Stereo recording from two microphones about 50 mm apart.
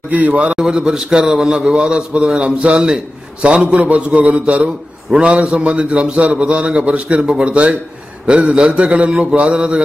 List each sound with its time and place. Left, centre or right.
0.1 s a man's voice: right
0.6 s a man's voice: centre